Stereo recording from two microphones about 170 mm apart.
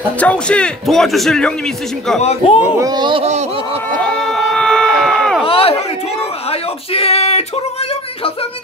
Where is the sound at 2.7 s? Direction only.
20° right (ahead or behind).